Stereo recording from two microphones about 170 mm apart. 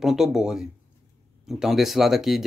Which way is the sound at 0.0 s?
Centre (ahead or behind).